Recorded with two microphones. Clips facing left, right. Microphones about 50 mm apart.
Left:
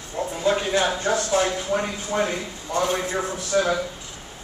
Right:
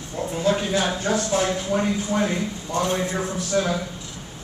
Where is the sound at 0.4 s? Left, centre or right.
Centre.